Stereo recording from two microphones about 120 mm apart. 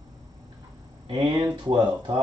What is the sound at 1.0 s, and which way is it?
Speech, 35° right (ahead or behind).